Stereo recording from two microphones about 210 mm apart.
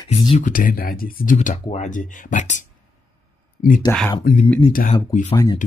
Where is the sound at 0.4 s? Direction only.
40° left (ahead or behind).